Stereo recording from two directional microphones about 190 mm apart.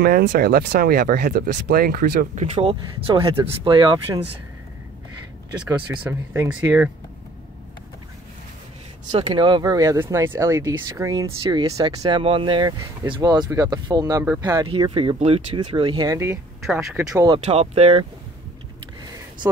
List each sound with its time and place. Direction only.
0.0 s speech: 55° right (ahead or behind); by 4.2 s 25° right (ahead or behind)
5.8 s speech: 5° right (ahead or behind)
9.1 s speech: 25° right (ahead or behind); by 17.0 s 10° right (ahead or behind)
17.1 s speech: 20° right (ahead or behind)
17.5 s speech: 35° right (ahead or behind)